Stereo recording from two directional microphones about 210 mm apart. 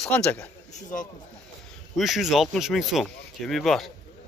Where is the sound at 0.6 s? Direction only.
35° left (ahead or behind).